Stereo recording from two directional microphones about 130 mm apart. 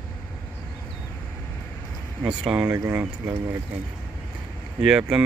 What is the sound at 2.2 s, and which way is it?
Speech, 5° right (ahead or behind).